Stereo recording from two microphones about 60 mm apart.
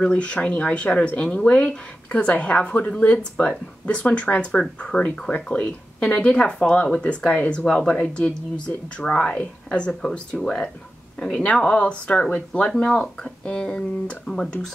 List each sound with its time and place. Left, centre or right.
0.0 s speech: centre